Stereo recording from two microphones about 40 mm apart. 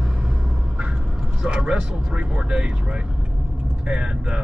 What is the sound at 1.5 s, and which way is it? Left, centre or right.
Speech, right.